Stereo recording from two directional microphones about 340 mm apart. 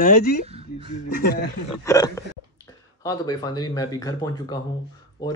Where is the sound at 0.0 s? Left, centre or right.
Left.